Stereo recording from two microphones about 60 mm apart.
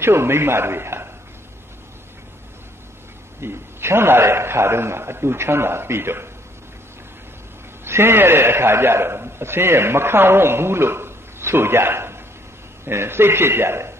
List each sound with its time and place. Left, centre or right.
0.0 s a man's voice: right
3.3 s a man's voice: right
7.8 s a man's voice: right